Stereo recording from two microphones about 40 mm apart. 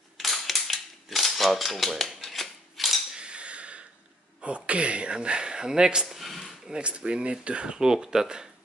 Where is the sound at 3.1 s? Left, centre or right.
Right.